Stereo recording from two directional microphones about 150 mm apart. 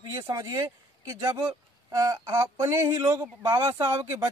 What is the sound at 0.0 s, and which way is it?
Speech, 25° right (ahead or behind).